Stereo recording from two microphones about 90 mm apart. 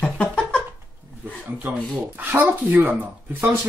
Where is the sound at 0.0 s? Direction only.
15° left (ahead or behind).